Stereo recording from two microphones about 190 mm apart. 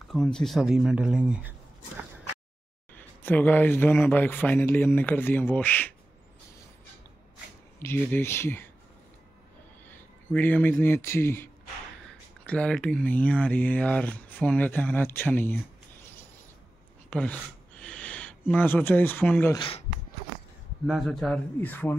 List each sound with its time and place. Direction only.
0.1 s speech: 5° left (ahead or behind)
2.9 s speech: 10° left (ahead or behind)
7.8 s speech: 10° left (ahead or behind)
9.8 s speech: 10° left (ahead or behind)
12.4 s speech: 5° left (ahead or behind)
17.1 s speech: 5° left (ahead or behind)
19.5 s speech: 25° left (ahead or behind)
20.8 s speech: centre (ahead or behind)